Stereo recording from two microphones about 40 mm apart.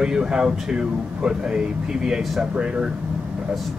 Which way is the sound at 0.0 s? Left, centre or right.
Centre.